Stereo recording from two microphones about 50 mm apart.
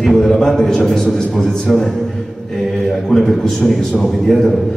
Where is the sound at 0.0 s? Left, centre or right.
Centre.